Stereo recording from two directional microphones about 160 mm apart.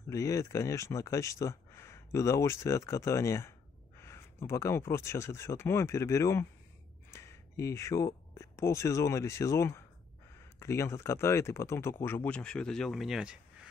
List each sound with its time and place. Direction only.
0.1 s speech: 20° left (ahead or behind); by 13.4 s 5° right (ahead or behind)